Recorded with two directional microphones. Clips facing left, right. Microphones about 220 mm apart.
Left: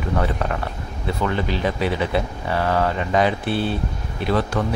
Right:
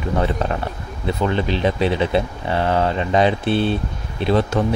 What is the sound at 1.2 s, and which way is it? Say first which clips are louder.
Speech: right 3 dB; 25° right (ahead or behind).